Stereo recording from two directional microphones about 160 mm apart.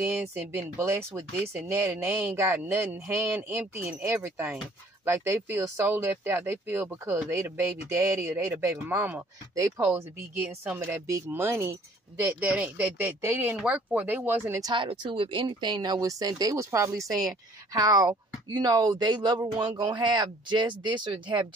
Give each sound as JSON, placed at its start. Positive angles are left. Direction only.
{"t": 0.0, "sound": "speech", "side_deg": -10}
{"t": 14.6, "sound": "speech", "side_deg": -30}